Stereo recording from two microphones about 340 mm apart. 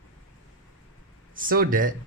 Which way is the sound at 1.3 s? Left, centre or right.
Right.